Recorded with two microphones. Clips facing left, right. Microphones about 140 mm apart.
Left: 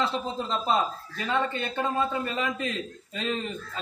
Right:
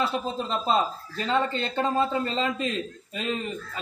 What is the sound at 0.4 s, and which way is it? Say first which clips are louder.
Speech: right 1 dB; 20° right (ahead or behind).